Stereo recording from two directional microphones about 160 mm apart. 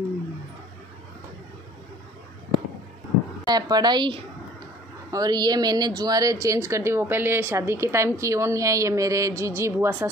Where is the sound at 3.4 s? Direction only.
25° right (ahead or behind).